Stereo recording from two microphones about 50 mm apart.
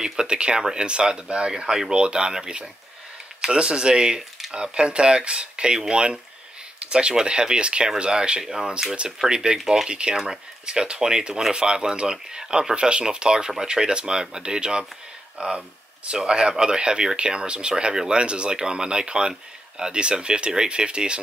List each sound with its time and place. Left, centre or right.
0.0 s speech: centre
9.6 s speech: centre
9.8 s speech: centre